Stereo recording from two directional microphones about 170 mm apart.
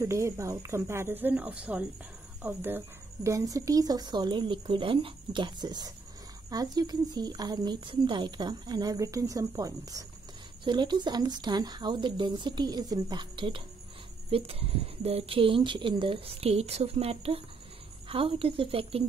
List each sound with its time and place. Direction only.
0.0 s a woman's voice: 15° right (ahead or behind); by 19.0 s 35° right (ahead or behind)